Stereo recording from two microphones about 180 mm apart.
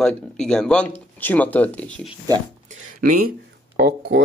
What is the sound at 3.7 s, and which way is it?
Speech, 65° right (ahead or behind).